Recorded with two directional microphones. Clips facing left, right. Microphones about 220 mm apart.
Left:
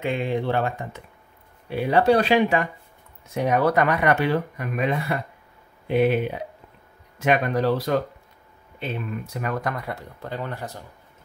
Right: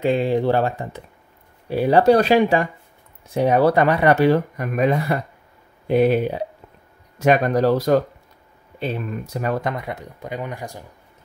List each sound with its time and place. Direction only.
0.0 s speech: 35° right (ahead or behind)
9.6 s speech: 20° right (ahead or behind)